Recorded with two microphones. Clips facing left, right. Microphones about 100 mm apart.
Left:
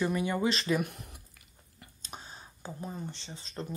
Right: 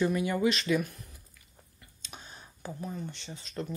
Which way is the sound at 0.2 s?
30° left (ahead or behind).